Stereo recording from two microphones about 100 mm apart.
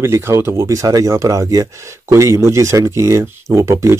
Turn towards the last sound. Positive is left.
turn(degrees=-30)  # may be behind; listen again after turning